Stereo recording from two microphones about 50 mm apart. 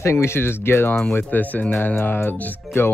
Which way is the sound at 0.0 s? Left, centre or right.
Left.